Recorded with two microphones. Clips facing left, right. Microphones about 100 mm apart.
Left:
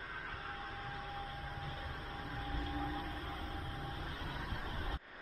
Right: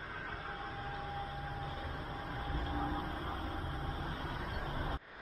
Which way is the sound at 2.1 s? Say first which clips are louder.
Right 1 dB; 30° right (ahead or behind).